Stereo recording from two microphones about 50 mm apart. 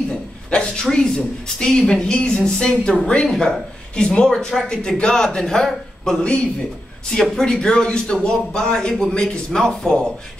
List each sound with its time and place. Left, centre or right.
0.5 s speech: centre